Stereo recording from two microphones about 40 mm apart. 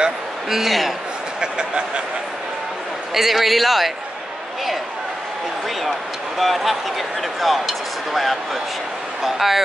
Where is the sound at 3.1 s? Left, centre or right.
Centre.